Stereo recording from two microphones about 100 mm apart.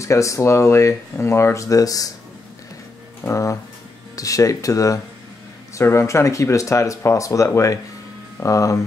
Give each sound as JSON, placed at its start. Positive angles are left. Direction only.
{"t": 0.0, "sound": "speech", "side_deg": 30}
{"t": 3.3, "sound": "speech", "side_deg": 30}